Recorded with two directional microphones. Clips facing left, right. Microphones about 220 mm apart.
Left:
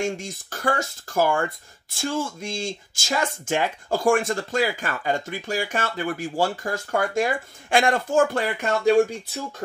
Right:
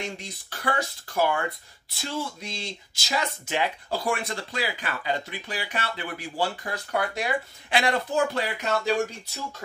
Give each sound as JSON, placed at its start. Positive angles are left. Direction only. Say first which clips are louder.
{"t": 0.0, "sound": "speech", "louder": "left 8 dB", "side_deg": 45}